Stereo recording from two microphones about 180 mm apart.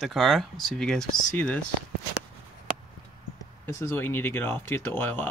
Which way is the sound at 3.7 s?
15° left (ahead or behind).